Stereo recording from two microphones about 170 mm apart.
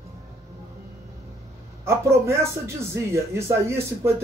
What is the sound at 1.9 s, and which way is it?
Speech, 15° right (ahead or behind).